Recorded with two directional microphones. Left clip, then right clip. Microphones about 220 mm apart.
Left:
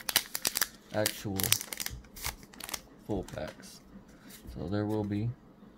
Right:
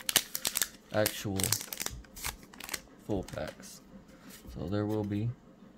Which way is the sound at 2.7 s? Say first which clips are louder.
Right 1 dB; 10° right (ahead or behind).